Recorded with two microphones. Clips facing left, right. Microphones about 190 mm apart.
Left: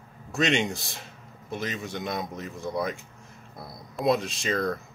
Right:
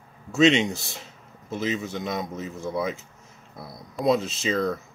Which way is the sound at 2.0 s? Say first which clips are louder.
Right 2 dB; centre (ahead or behind).